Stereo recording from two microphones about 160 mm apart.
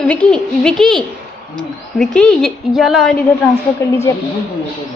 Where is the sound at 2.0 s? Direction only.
5° left (ahead or behind).